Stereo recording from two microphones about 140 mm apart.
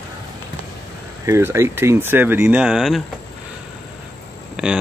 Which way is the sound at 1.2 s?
20° right (ahead or behind).